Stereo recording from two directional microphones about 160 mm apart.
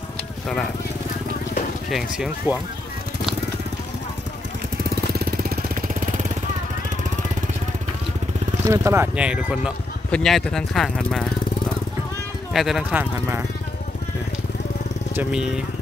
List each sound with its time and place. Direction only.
1.9 s speech: 5° right (ahead or behind)
5.1 s vehicle: 70° right (ahead or behind); by 6.3 s 55° right (ahead or behind)
8.6 s speech: 20° right (ahead or behind)
10.1 s speech: 5° left (ahead or behind)
12.5 s speech: centre (ahead or behind)
15.1 s speech: 5° right (ahead or behind)